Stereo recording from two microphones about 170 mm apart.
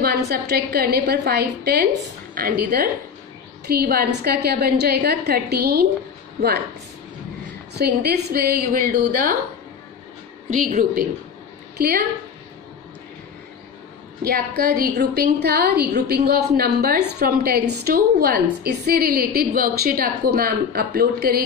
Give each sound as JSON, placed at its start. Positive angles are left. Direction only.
{"t": 0.3, "sound": "a woman's voice", "side_deg": -70}
{"t": 2.3, "sound": "a woman's voice", "side_deg": -60}
{"t": 7.7, "sound": "a woman's voice", "side_deg": -75}
{"t": 10.5, "sound": "a woman's voice", "side_deg": -50}
{"t": 14.2, "sound": "a woman's voice", "side_deg": -65}